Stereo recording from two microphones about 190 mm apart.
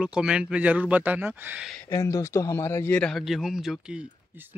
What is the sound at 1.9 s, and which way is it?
Speech, 15° left (ahead or behind).